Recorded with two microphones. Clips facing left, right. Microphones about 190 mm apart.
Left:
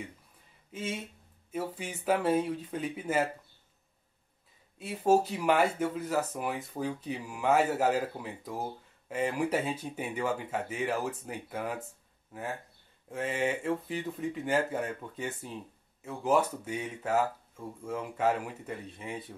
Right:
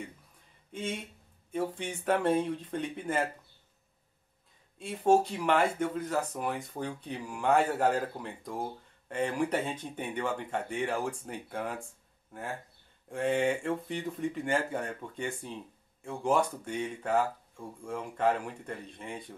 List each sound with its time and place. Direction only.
0.7 s speech: 5° left (ahead or behind)
4.7 s speech: 5° left (ahead or behind)